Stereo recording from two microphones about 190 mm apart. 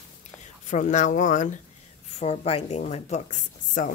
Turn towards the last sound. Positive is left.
turn(degrees=40)  # may be behind; listen again after turning